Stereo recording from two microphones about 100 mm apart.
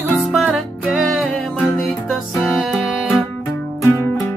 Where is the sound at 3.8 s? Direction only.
25° left (ahead or behind).